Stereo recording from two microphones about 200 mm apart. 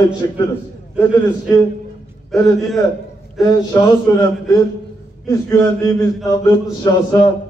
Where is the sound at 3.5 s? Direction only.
15° left (ahead or behind).